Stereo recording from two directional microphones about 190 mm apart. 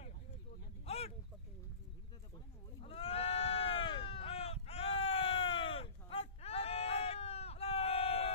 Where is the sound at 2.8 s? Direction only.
30° left (ahead or behind).